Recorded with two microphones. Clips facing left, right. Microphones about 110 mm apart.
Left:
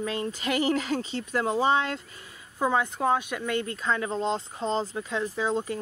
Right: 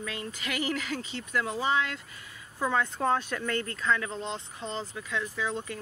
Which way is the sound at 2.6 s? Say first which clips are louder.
Left 3 dB; 20° left (ahead or behind).